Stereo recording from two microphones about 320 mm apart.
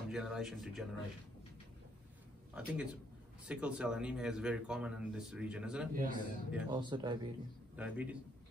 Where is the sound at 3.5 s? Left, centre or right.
Centre.